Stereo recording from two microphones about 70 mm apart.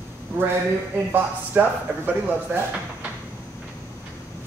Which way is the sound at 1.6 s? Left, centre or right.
Right.